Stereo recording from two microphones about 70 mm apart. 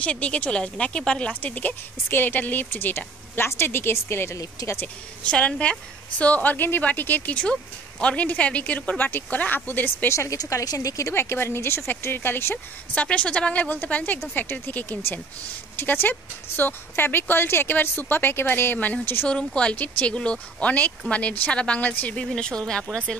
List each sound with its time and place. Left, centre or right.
0.0 s speech: centre
1.4 s speech: left
4.6 s speech: left
5.2 s a woman's voice: centre
10.0 s speech: left
10.3 s speech: left
12.9 s a woman's voice: centre
19.2 s speech: centre